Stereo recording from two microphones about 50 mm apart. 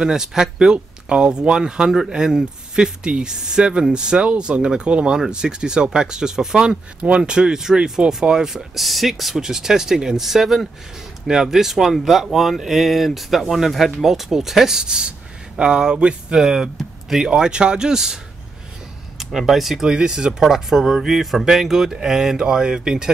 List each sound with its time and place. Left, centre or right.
0.0 s speech: centre
16.7 s a sound: centre
17.3 s speech: centre
19.9 s speech: centre